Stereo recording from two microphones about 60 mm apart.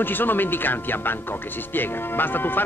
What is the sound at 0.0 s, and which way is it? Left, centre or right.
A man's voice, left.